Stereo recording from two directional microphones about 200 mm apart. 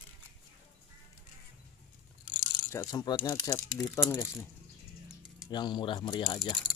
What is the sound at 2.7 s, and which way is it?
Speech, 15° left (ahead or behind).